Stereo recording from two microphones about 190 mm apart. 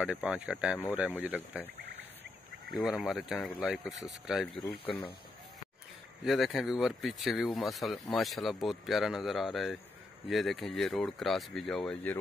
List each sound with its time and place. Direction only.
0.0 s speech: 5° right (ahead or behind)
2.8 s speech: centre (ahead or behind)
4.6 s speech: 30° left (ahead or behind)
6.2 s speech: centre (ahead or behind)